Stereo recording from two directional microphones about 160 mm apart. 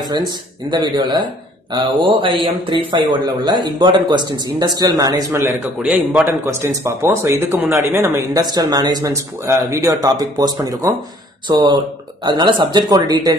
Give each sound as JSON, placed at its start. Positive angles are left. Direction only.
{"t": 0.7, "sound": "speech", "side_deg": -30}